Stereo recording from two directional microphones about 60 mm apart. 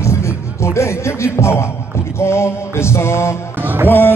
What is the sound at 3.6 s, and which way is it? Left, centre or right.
Music, right.